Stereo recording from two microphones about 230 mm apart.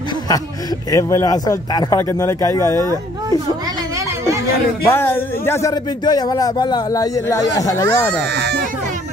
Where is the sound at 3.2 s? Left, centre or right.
Centre.